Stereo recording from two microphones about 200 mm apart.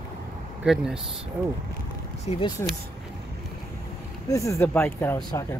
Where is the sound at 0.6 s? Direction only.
5° right (ahead or behind).